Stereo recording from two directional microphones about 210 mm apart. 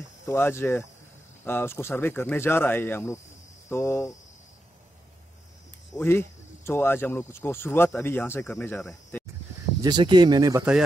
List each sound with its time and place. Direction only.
0.3 s speech: 10° left (ahead or behind)
3.6 s cricket: 10° left (ahead or behind)
5.9 s speech: 10° left (ahead or behind)
9.8 s speech: 20° right (ahead or behind)